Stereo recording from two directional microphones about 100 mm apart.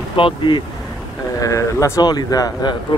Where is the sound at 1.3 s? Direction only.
35° left (ahead or behind).